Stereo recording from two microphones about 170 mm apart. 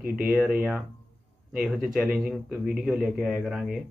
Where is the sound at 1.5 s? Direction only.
5° right (ahead or behind).